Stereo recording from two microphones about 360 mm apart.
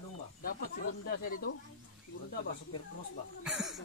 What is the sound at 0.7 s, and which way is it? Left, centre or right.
Speech, left.